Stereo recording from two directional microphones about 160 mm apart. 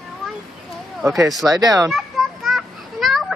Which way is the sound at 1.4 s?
20° right (ahead or behind).